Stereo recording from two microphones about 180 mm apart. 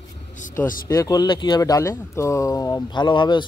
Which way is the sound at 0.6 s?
50° left (ahead or behind).